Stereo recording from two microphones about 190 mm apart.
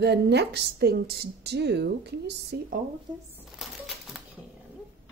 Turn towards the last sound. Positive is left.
turn(degrees=0)  # may be behind; listen again after turning